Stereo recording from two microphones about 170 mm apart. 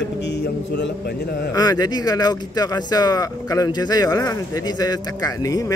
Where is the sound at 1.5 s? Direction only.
20° left (ahead or behind).